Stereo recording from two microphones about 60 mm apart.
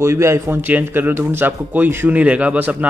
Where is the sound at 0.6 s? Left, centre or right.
Right.